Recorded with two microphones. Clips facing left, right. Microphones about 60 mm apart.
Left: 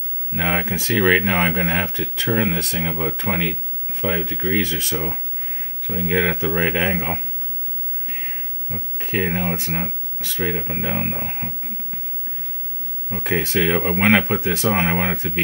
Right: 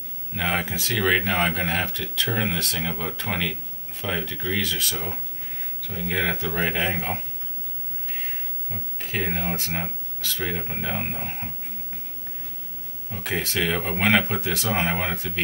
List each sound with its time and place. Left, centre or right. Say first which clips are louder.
0.3 s speech: left 4 dB; left
13.1 s speech: left 6 dB; left